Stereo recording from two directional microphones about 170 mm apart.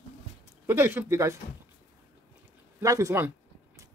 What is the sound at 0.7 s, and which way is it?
Speech, 15° right (ahead or behind).